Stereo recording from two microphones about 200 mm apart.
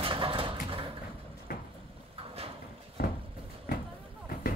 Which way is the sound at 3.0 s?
50° left (ahead or behind).